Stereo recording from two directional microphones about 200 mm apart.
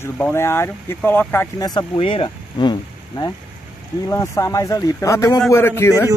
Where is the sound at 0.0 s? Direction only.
10° left (ahead or behind).